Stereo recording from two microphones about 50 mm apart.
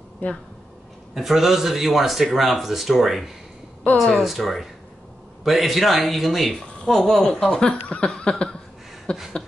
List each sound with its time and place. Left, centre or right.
0.2 s speech: left
1.1 s a man's voice: centre
7.5 s speech: left